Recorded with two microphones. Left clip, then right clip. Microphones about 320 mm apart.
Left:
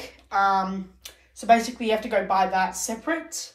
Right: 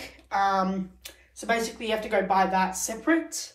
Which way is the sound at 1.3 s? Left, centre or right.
Centre.